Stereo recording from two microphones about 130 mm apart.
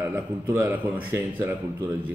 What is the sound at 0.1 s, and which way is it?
A man's voice, 15° right (ahead or behind).